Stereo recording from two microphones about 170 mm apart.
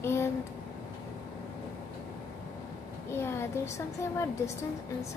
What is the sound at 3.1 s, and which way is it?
A child's voice, 15° left (ahead or behind).